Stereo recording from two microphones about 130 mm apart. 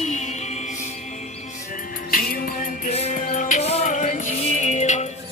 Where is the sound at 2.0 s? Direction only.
90° left.